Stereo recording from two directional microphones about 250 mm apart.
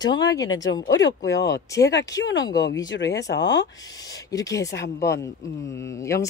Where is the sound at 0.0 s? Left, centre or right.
Centre.